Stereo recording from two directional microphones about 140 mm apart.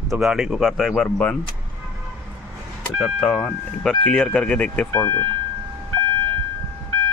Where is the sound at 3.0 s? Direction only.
5° left (ahead or behind).